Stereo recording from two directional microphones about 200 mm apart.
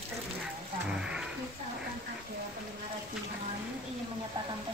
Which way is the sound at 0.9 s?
5° right (ahead or behind).